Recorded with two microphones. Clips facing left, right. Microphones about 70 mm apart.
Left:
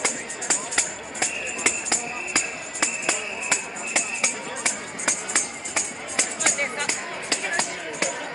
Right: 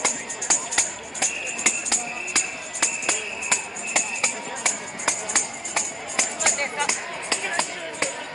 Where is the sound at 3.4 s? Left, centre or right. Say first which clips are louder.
Even; centre.